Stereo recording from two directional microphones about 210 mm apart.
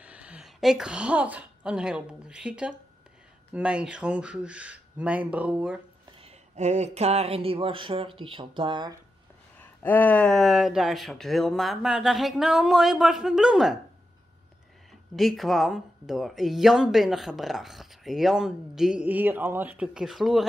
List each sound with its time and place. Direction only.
0.0 s a woman's voice: 5° right (ahead or behind)
6.2 s speech: 35° right (ahead or behind)
9.8 s speech: 10° left (ahead or behind)
15.1 s speech: centre (ahead or behind)